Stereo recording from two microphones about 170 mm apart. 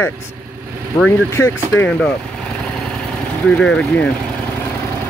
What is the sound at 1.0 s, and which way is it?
Speech, 15° left (ahead or behind).